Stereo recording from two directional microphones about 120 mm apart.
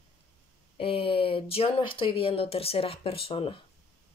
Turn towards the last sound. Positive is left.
turn(degrees=50)  # may be behind; listen again after turning